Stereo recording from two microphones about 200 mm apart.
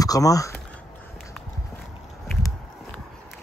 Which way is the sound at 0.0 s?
15° left (ahead or behind).